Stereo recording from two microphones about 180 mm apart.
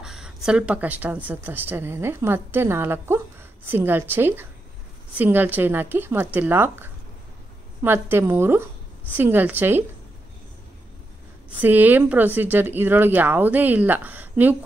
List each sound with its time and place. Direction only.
0.0 s speech: 5° right (ahead or behind)
11.6 s speech: 10° right (ahead or behind)